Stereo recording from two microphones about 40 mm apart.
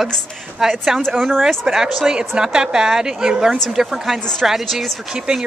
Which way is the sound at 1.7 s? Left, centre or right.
Centre.